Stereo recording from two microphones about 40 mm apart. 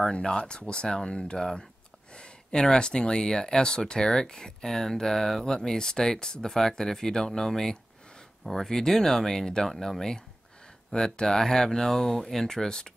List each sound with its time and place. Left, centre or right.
0.1 s speech: left